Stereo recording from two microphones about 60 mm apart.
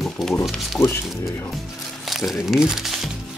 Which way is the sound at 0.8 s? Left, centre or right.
Left.